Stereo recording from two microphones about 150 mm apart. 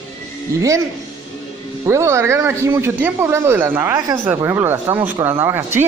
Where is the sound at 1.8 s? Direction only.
20° right (ahead or behind).